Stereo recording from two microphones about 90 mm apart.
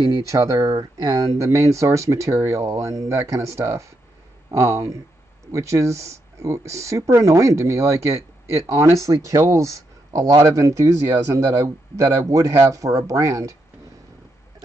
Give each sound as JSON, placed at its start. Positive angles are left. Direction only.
{"t": 0.0, "sound": "speech", "side_deg": -40}